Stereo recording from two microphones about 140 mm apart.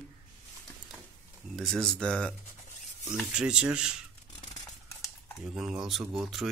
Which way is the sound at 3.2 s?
5° right (ahead or behind).